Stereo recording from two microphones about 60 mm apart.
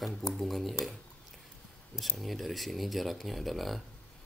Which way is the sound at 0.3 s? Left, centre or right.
Centre.